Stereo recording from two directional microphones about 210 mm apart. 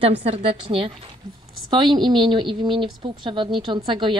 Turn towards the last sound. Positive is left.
turn(degrees=-20)  # may be behind; listen again after turning